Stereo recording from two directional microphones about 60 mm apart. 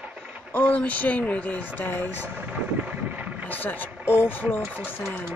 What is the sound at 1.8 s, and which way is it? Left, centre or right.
Speech, left.